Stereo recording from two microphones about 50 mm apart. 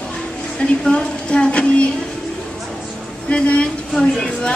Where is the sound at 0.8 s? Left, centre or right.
Centre.